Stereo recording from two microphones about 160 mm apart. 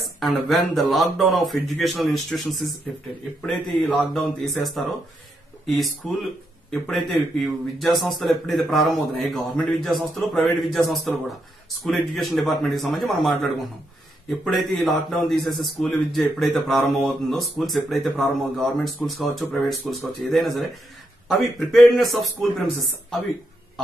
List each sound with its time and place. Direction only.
0.0 s a man's voice: centre (ahead or behind)